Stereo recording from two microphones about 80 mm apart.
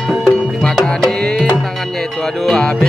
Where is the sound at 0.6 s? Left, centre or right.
Centre.